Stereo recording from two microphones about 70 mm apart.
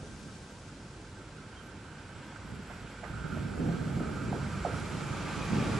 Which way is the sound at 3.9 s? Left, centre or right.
Centre.